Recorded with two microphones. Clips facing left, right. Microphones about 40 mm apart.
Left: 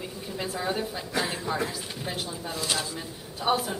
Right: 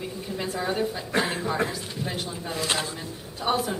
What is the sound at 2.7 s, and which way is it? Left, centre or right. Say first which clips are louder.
Speech: right 2 dB; right.